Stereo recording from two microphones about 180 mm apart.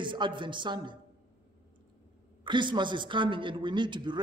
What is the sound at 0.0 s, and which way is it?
Speech, 25° right (ahead or behind).